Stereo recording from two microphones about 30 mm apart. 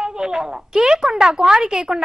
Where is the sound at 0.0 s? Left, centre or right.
Right.